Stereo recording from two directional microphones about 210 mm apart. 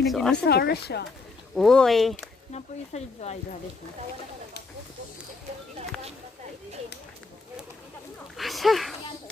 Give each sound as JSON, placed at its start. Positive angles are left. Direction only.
{"t": 0.0, "sound": "speech", "side_deg": 0}
{"t": 0.4, "sound": "speech", "side_deg": 50}
{"t": 1.5, "sound": "speech", "side_deg": 0}
{"t": 2.5, "sound": "speech", "side_deg": 30}
{"t": 8.4, "sound": "speech", "side_deg": 0}